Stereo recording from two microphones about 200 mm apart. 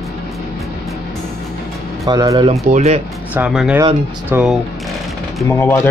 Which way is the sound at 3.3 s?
5° right (ahead or behind).